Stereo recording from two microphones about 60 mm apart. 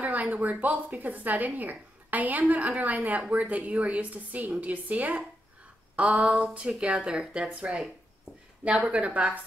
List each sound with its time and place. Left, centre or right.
0.0 s a woman's voice: right